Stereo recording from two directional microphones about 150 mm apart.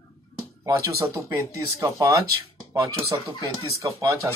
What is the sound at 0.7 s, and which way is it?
Speech, 20° right (ahead or behind).